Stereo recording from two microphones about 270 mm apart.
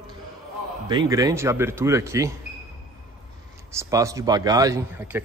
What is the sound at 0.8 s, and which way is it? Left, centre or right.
Speech, centre.